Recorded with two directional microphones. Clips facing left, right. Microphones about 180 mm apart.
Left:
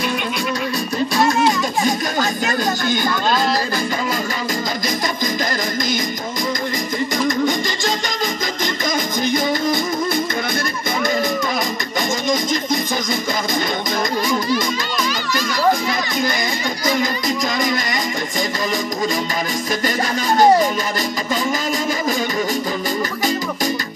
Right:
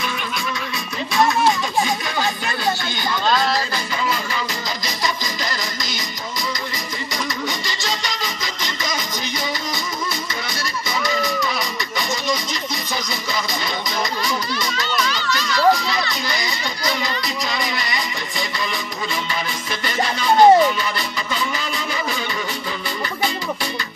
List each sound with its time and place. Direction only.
1.9 s music: 45° left (ahead or behind)
7.2 s music: 50° left (ahead or behind)
11.1 s music: 50° left (ahead or behind)
15.3 s music: 50° left (ahead or behind)
20.2 s speech: 45° left (ahead or behind)